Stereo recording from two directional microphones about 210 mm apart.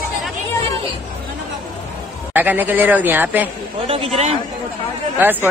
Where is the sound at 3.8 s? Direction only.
30° right (ahead or behind).